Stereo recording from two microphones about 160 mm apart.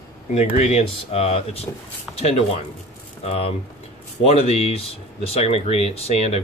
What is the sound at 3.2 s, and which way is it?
Speech, 40° left (ahead or behind).